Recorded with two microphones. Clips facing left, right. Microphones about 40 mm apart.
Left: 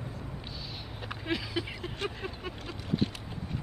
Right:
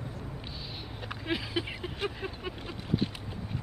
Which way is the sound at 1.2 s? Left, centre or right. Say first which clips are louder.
Right 1 dB; centre.